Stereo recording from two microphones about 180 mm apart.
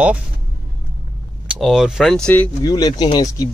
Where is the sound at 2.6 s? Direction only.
20° left (ahead or behind).